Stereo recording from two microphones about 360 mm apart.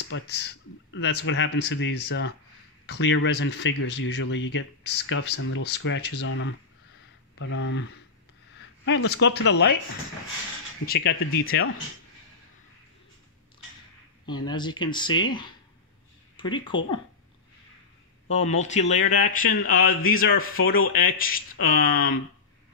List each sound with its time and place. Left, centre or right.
0.1 s speech: left
8.8 s speech: left
10.9 s speech: left
14.2 s speech: centre
18.3 s speech: centre